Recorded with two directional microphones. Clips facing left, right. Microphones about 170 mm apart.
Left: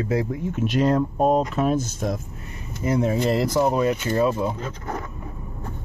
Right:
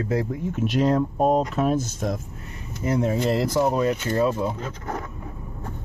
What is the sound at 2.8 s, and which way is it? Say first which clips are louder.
Speech: left 1 dB; 15° left (ahead or behind).